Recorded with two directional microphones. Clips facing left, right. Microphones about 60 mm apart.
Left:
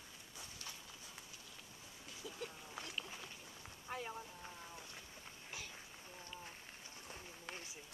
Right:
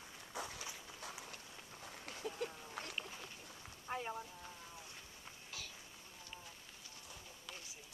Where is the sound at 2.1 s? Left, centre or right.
Right.